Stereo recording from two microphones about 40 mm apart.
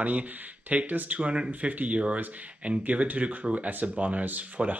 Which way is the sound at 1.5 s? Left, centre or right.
Right.